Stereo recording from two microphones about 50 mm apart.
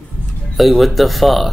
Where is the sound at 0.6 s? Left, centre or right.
Centre.